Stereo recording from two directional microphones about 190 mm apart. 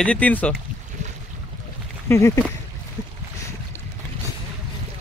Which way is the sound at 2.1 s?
15° left (ahead or behind).